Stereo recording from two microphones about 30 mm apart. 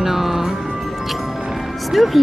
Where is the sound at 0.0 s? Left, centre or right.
Centre.